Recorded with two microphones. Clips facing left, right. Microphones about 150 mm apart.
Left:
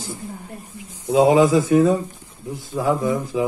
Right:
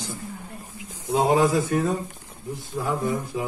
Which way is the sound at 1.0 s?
90° left.